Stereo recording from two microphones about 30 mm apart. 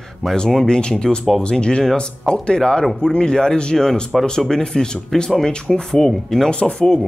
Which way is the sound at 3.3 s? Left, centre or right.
Left.